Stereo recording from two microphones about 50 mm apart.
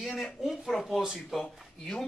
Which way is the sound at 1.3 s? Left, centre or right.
Centre.